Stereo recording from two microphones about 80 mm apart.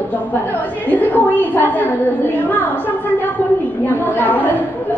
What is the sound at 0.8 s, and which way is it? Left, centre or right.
Speech, left.